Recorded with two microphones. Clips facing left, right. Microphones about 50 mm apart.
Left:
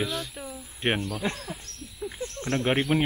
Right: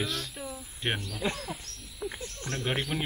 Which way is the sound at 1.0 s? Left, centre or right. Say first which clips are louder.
Left 2 dB; left.